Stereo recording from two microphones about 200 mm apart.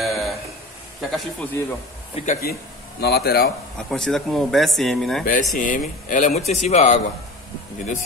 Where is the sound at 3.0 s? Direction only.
55° left (ahead or behind).